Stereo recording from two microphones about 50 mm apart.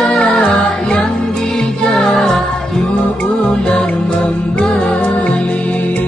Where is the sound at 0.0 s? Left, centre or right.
Centre.